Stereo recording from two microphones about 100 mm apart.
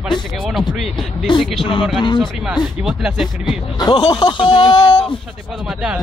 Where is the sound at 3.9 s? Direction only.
55° left (ahead or behind).